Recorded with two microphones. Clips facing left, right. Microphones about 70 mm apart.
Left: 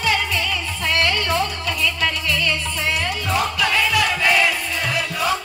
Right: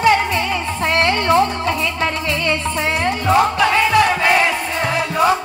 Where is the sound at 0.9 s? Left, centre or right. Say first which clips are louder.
Right 6 dB; right.